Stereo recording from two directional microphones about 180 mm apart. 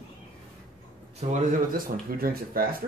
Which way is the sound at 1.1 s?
50° right (ahead or behind).